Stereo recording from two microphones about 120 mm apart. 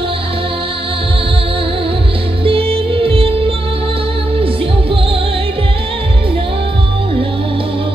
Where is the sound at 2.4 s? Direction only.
50° right (ahead or behind).